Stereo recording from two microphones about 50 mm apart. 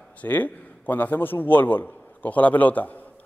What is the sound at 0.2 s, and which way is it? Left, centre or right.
A man's voice, left.